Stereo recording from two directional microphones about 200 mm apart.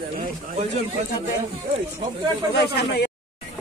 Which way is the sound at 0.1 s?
40° right (ahead or behind).